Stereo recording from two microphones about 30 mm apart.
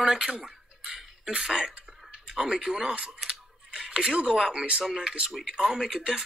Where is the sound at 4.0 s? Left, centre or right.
Right.